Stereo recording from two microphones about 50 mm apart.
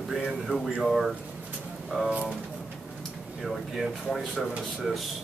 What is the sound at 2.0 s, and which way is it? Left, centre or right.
Speech, right.